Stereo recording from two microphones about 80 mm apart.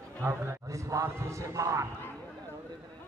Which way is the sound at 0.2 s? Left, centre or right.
Right.